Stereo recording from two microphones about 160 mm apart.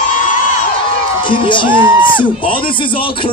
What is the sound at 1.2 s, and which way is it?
Speech, 30° left (ahead or behind).